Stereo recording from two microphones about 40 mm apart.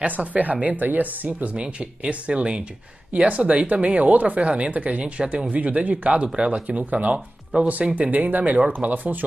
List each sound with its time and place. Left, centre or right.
0.0 s speech: right
1.8 s speech: right
3.1 s speech: right
5.0 s speech: right
5.5 s speech: right
8.0 s speech: right